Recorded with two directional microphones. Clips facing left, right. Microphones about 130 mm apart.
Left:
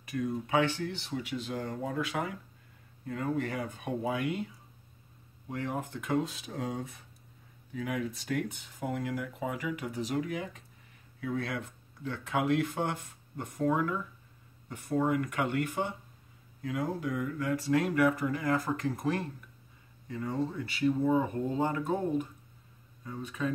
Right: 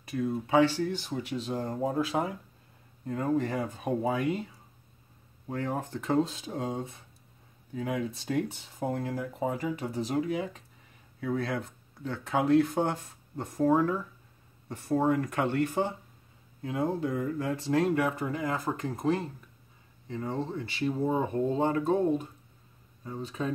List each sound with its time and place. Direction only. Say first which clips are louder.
0.0 s speech: right 2 dB; 30° right (ahead or behind)
3.3 s speech: right 4 dB; 35° right (ahead or behind)
5.5 s speech: right 3 dB; 35° right (ahead or behind)